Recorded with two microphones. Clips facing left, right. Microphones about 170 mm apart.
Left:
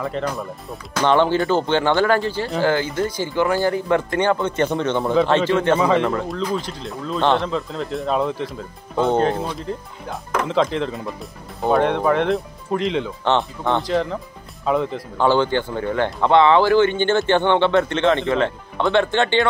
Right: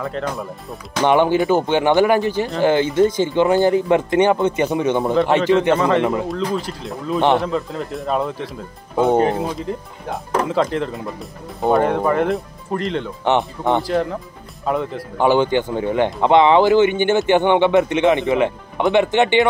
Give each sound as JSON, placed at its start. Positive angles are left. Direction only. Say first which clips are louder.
{"t": 0.0, "sound": "speech", "louder": "even", "side_deg": 0}
{"t": 1.0, "sound": "speech", "louder": "right 2 dB", "side_deg": -15}
{"t": 5.8, "sound": "speech", "louder": "right 1 dB", "side_deg": 0}
{"t": 10.5, "sound": "speech", "louder": "even", "side_deg": 0}
{"t": 13.2, "sound": "speech", "louder": "right 4 dB", "side_deg": -15}
{"t": 14.6, "sound": "speech", "louder": "left 1 dB", "side_deg": 0}
{"t": 15.1, "sound": "speech", "louder": "right 2 dB", "side_deg": -15}